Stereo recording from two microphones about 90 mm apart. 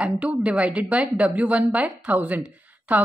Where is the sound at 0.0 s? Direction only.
15° right (ahead or behind).